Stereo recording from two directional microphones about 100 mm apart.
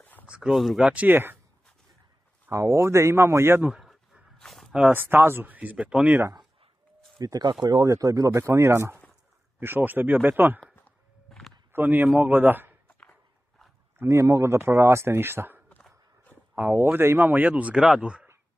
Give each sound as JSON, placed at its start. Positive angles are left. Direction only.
{"t": 0.3, "sound": "speech", "side_deg": -5}
{"t": 0.8, "sound": "speech", "side_deg": -15}
{"t": 2.5, "sound": "speech", "side_deg": -30}
{"t": 3.7, "sound": "a sound", "side_deg": -5}
{"t": 4.9, "sound": "speech", "side_deg": -20}
{"t": 7.2, "sound": "speech", "side_deg": -40}
{"t": 11.7, "sound": "speech", "side_deg": -20}
{"t": 13.9, "sound": "speech", "side_deg": -30}